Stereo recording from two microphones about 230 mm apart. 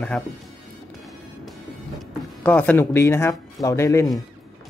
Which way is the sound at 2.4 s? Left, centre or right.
Centre.